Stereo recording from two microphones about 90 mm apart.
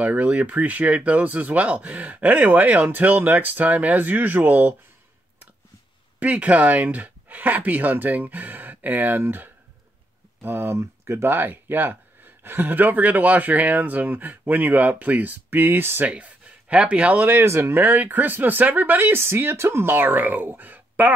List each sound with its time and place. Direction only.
0.0 s speech: 20° right (ahead or behind)
6.1 s speech: 15° right (ahead or behind)
17.4 s speech: 25° right (ahead or behind)